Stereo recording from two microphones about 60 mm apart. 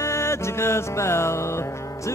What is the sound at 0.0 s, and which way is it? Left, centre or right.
Music, left.